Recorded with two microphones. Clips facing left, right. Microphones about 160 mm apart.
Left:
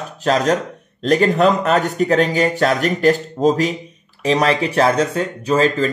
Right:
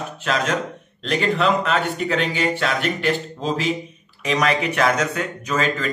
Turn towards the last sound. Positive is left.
turn(degrees=35)  # may be behind; listen again after turning